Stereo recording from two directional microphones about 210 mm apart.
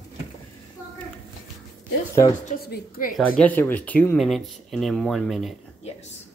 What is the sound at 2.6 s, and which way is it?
Speech, 45° left (ahead or behind).